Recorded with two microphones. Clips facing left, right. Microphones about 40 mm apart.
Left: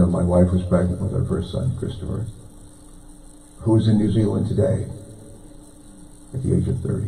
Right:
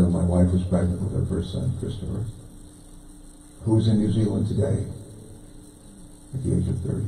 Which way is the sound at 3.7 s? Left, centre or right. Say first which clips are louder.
Left 4 dB; centre.